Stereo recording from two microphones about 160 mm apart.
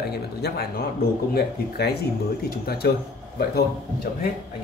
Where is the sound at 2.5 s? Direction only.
75° left (ahead or behind).